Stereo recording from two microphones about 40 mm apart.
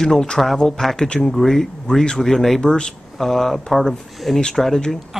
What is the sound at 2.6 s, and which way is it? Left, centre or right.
Speech, left.